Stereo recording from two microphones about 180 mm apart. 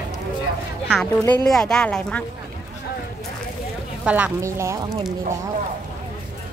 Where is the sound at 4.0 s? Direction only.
10° right (ahead or behind).